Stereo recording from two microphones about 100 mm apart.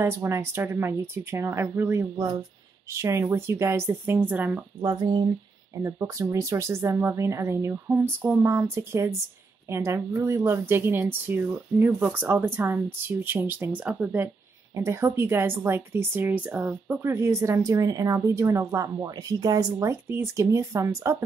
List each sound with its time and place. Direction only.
0.0 s a woman's voice: 25° right (ahead or behind)
5.8 s a woman's voice: 30° right (ahead or behind)
14.8 s a woman's voice: 30° right (ahead or behind)